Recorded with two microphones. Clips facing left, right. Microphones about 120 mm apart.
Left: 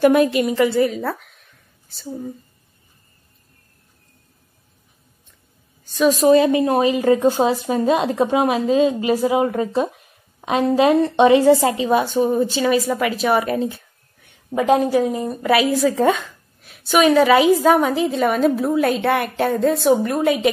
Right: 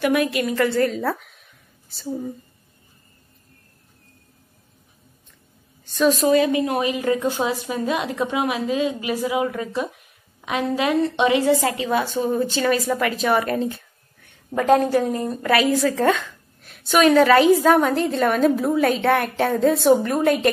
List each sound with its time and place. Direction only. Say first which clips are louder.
0.0 s speech: left 6 dB; 30° left (ahead or behind)
0.7 s a sound: left 2 dB; 5° left (ahead or behind)
5.9 s a woman's voice: left 2 dB; 5° left (ahead or behind)
6.2 s a woman's voice: left 4 dB; 30° left (ahead or behind)
11.0 s speech: left 5 dB; 30° left (ahead or behind)
12.4 s a woman's voice: left 2 dB; 10° left (ahead or behind)
16.6 s a woman's voice: left 1 dB; centre (ahead or behind)